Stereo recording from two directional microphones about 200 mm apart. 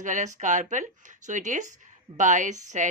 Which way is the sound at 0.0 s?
40° right (ahead or behind).